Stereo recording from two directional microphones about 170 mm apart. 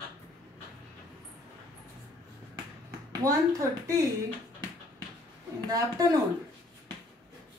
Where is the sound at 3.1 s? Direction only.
20° right (ahead or behind).